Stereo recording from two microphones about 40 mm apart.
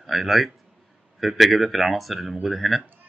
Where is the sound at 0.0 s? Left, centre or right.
Centre.